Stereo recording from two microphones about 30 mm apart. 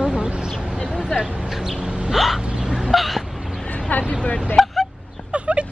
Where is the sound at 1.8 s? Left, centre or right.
Right.